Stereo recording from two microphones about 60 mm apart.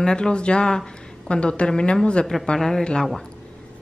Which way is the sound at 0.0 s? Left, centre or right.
Centre.